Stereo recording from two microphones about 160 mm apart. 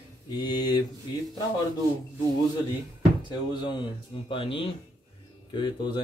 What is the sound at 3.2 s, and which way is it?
Speech, 30° left (ahead or behind).